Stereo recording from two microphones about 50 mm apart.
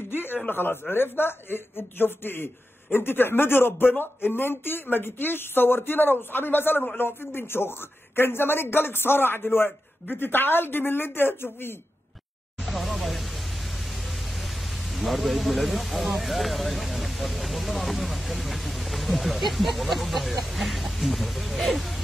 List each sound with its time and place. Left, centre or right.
0.1 s a sound: left
0.5 s speech: left
12.5 s speech: centre